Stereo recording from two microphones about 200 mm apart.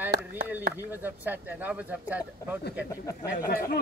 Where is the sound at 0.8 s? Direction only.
10° right (ahead or behind).